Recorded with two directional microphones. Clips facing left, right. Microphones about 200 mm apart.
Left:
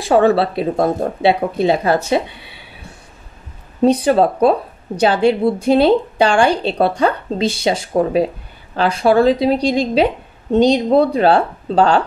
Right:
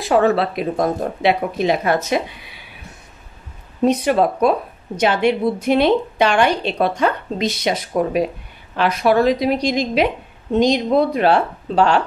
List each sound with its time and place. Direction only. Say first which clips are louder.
0.0 s a woman's voice: left 3 dB; 30° left (ahead or behind)